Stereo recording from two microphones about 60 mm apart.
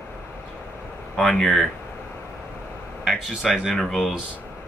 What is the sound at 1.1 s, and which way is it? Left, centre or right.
Speech, centre.